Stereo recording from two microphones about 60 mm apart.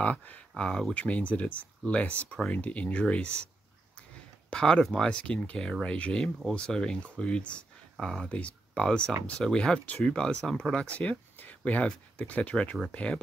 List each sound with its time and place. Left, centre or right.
0.0 s speech: left
0.7 s speech: centre
0.9 s speech: left
4.5 s speech: centre